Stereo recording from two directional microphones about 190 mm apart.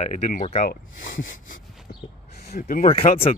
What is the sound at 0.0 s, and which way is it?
Speech, 40° left (ahead or behind).